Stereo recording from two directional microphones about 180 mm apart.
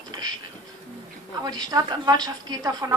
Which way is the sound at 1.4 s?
20° right (ahead or behind).